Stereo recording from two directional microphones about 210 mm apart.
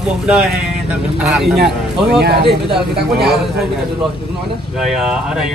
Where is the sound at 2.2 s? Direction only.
50° right (ahead or behind).